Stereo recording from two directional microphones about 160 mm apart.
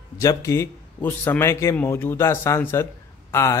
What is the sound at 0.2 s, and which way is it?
A man's voice, 20° left (ahead or behind).